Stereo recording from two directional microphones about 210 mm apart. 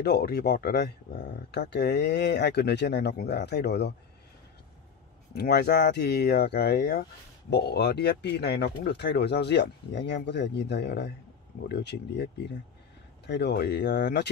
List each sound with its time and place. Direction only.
0.0 s speech: 50° left (ahead or behind)
5.3 s speech: 50° left (ahead or behind)
13.3 s speech: 55° left (ahead or behind)